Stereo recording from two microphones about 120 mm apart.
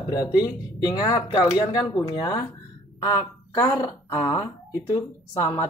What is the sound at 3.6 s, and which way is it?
Speech, 50° left (ahead or behind).